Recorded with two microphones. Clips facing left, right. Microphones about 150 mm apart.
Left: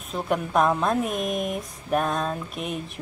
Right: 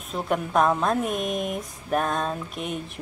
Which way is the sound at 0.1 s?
Centre (ahead or behind).